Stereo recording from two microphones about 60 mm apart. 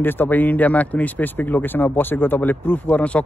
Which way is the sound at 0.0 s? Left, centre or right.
Left.